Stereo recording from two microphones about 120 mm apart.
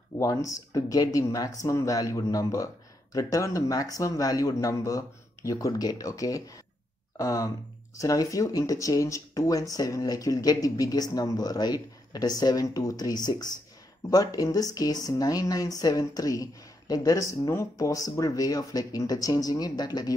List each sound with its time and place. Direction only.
0.2 s speech: 25° left (ahead or behind)